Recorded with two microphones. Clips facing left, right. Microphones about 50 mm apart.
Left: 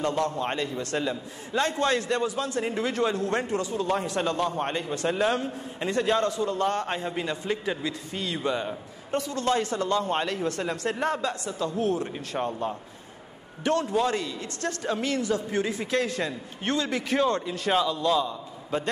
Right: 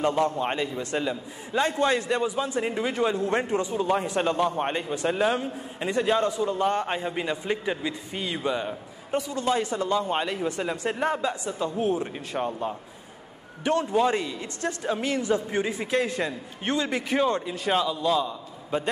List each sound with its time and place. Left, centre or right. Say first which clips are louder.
0.0 s a man's voice: right 3 dB; right
12.4 s a man's voice: even; centre
13.7 s a man's voice: right 2 dB; centre